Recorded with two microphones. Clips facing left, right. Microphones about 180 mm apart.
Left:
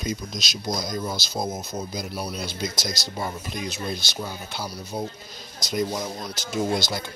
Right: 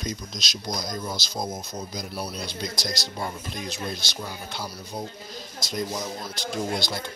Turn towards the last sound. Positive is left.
turn(degrees=0)  # may be behind; listen again after turning